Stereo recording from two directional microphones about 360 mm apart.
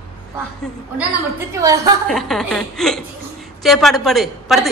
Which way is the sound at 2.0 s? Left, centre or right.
Centre.